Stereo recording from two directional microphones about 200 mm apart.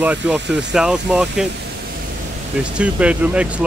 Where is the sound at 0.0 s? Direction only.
5° right (ahead or behind).